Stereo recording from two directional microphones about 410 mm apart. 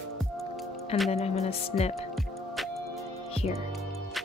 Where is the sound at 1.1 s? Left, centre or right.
Centre.